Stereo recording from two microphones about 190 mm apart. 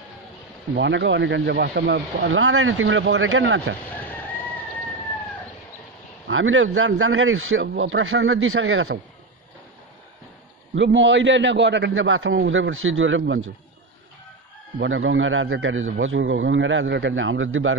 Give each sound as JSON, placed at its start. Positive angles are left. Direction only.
{"t": 0.7, "sound": "speech", "side_deg": -70}
{"t": 6.2, "sound": "a man's voice", "side_deg": -90}
{"t": 10.7, "sound": "speech", "side_deg": -75}
{"t": 14.8, "sound": "a man's voice", "side_deg": -85}